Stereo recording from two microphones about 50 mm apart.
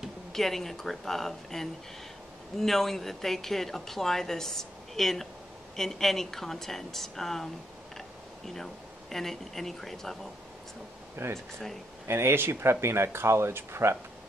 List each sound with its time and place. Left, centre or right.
0.3 s speech: centre
9.1 s speech: centre
11.2 s speech: right